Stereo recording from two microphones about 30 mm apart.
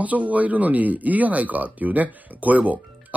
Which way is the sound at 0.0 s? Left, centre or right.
Right.